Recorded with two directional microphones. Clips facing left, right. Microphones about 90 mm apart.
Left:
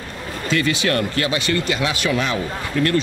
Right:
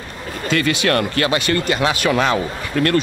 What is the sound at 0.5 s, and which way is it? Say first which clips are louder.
Speech: right 2 dB; 60° right (ahead or behind).